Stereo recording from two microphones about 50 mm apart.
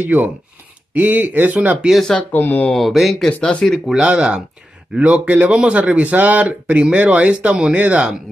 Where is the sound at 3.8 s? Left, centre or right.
Centre.